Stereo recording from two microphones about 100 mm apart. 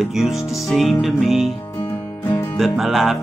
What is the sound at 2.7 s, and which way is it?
Speech, 5° right (ahead or behind).